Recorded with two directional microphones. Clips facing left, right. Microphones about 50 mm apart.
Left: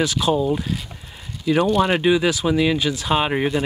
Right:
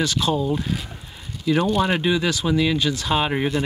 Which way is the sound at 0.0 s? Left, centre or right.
Centre.